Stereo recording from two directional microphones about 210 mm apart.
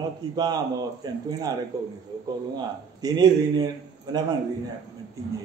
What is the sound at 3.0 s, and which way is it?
A man's voice, 20° right (ahead or behind).